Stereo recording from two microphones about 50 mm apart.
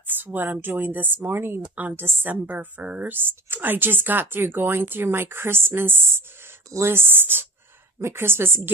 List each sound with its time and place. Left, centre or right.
0.1 s speech: right
2.2 s speech: right
8.0 s speech: right